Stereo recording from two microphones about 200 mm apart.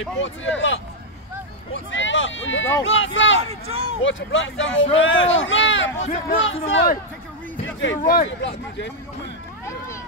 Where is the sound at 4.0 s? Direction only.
70° left (ahead or behind).